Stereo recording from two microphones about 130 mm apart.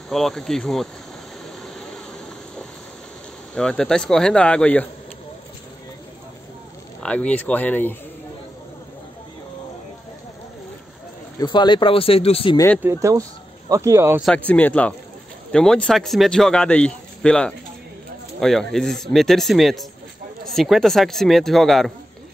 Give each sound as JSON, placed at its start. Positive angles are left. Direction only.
{"t": 0.1, "sound": "speech", "side_deg": 5}
{"t": 3.5, "sound": "speech", "side_deg": 5}
{"t": 7.0, "sound": "speech", "side_deg": 10}
{"t": 11.3, "sound": "speech", "side_deg": 35}
{"t": 12.8, "sound": "speech", "side_deg": -25}
{"t": 14.2, "sound": "speech", "side_deg": 10}